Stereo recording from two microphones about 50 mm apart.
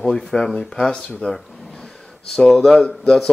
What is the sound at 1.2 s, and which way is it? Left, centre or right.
Speech, left.